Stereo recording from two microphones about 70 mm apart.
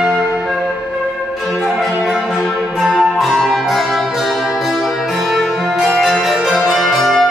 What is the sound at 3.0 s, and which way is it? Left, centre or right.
Music, centre.